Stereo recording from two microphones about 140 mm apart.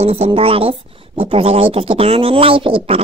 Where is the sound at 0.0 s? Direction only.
45° right (ahead or behind).